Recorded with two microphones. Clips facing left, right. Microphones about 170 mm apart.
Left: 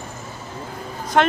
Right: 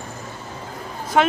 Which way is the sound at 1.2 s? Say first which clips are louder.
Even; 5° right (ahead or behind).